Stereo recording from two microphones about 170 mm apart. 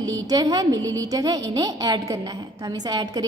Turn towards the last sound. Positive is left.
turn(degrees=-25)  # may be behind; listen again after turning